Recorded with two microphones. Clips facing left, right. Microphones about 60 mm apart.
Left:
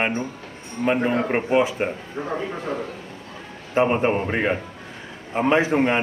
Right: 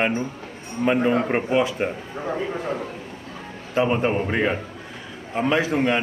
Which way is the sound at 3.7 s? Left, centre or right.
Left.